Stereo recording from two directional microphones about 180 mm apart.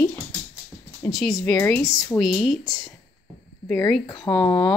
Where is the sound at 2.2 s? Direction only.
5° right (ahead or behind).